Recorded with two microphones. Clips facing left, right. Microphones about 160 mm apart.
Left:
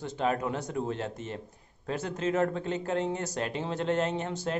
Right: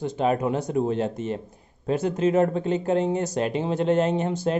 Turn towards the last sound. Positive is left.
turn(degrees=-15)  # may be behind; listen again after turning